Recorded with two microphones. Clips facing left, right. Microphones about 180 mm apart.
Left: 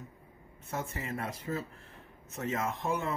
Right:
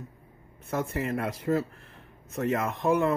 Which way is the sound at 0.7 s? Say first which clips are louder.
Right 8 dB; 65° right (ahead or behind).